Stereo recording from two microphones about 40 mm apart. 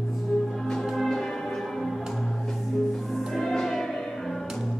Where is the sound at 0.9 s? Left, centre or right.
Centre.